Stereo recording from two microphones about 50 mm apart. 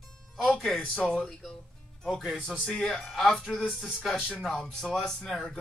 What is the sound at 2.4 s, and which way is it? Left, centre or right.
Speech, centre.